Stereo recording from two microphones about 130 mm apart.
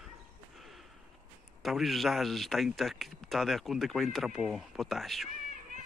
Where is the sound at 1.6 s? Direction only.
Centre (ahead or behind).